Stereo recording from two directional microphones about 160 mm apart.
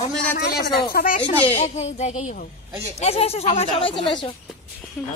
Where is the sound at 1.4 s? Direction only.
40° left (ahead or behind).